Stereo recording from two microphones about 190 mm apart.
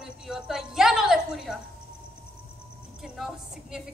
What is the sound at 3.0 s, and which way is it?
Speech, centre (ahead or behind).